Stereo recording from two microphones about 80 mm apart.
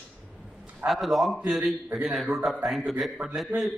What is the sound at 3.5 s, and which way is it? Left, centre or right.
Speech, right.